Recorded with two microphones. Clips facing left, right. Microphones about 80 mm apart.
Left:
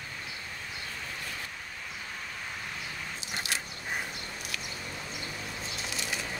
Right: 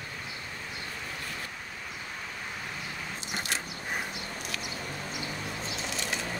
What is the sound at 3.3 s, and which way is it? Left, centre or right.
Biting, centre.